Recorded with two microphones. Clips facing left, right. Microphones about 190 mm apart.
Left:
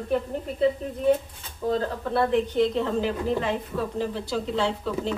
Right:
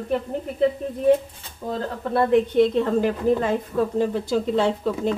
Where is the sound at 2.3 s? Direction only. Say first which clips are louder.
Right 8 dB; 55° right (ahead or behind).